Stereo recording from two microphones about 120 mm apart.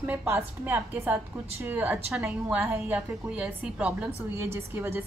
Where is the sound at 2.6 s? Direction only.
15° right (ahead or behind).